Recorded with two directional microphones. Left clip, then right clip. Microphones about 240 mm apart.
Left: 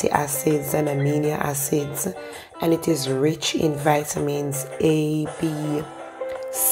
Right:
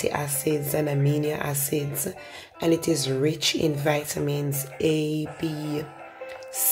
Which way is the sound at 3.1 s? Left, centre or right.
Centre.